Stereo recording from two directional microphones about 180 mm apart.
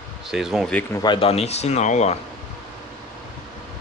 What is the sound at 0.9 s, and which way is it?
A man's voice, 30° left (ahead or behind).